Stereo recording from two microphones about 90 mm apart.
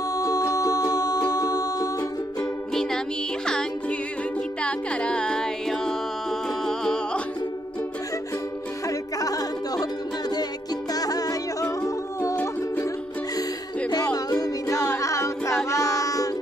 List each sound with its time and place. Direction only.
0.1 s music: 40° left (ahead or behind)
2.7 s music: 5° left (ahead or behind)
4.6 s music: 10° left (ahead or behind)
8.8 s music: 40° left (ahead or behind)
14.1 s music: 45° left (ahead or behind)
14.8 s a capella: 35° left (ahead or behind)
15.7 s music: 35° left (ahead or behind)